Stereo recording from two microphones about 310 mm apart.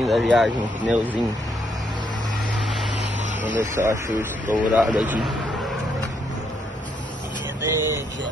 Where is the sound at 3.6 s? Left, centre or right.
Right.